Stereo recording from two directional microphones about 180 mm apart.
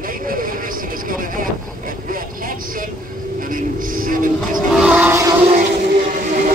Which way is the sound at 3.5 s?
50° right (ahead or behind).